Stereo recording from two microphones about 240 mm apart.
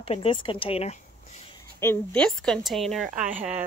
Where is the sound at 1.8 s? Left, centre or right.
Centre.